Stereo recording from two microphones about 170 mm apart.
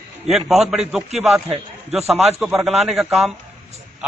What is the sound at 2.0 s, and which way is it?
Speech, 40° right (ahead or behind).